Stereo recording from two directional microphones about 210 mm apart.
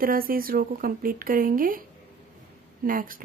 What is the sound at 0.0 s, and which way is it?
Speech, 45° right (ahead or behind).